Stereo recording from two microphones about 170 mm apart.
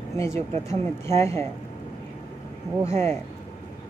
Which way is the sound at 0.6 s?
15° left (ahead or behind).